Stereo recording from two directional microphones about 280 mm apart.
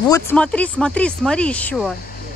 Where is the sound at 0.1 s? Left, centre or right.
Centre.